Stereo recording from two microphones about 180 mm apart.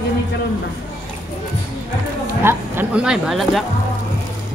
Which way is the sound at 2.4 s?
10° right (ahead or behind).